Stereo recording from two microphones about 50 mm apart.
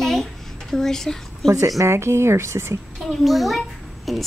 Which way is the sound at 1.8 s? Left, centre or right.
Right.